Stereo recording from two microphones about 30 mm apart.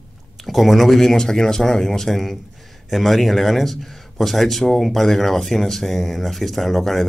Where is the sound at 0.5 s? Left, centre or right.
Centre.